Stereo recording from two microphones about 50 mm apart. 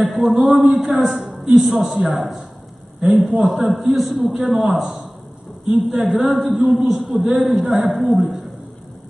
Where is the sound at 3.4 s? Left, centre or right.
Centre.